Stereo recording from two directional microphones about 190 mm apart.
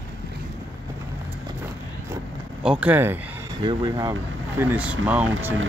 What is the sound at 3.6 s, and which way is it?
Speech, 25° right (ahead or behind).